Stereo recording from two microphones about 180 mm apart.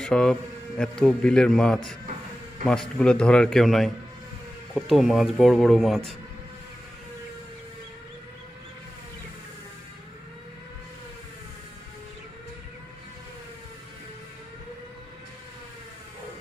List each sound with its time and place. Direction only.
0.0 s a man's voice: 5° left (ahead or behind)